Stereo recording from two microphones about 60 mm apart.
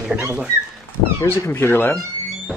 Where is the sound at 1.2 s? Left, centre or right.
Left.